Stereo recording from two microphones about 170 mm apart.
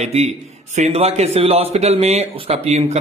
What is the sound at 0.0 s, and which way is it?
A man's voice, 40° right (ahead or behind).